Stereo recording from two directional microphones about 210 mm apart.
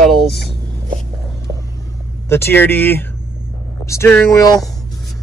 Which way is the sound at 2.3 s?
10° left (ahead or behind).